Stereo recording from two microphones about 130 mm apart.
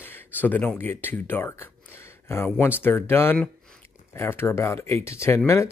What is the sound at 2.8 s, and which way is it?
Speech, 15° left (ahead or behind).